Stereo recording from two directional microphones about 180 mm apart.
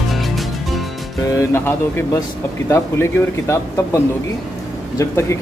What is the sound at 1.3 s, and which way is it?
Speech, 15° left (ahead or behind).